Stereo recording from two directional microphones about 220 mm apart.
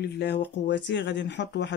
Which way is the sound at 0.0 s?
50° left (ahead or behind).